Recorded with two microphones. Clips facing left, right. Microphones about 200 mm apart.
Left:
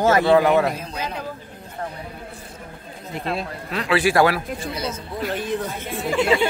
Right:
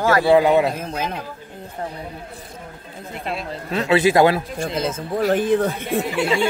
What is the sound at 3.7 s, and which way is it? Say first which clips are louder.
Speech: right 4 dB; 25° right (ahead or behind).